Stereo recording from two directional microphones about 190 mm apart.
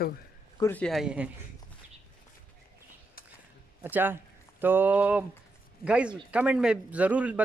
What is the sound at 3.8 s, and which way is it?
A man's voice, 10° right (ahead or behind).